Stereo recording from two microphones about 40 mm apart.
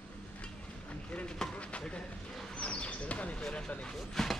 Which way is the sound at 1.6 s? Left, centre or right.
Left.